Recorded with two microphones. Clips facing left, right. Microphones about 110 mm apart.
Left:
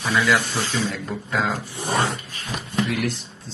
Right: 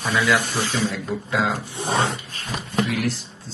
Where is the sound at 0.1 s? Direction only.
15° right (ahead or behind).